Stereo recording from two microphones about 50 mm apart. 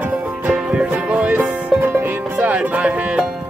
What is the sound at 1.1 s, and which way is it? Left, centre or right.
Music, right.